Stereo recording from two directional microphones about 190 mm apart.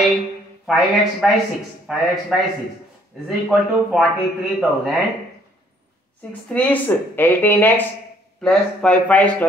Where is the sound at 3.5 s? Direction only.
5° right (ahead or behind).